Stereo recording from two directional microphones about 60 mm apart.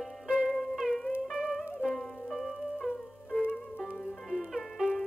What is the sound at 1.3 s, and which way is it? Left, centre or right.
Music, centre.